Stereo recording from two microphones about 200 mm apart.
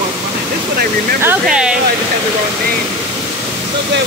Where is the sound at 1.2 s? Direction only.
5° right (ahead or behind).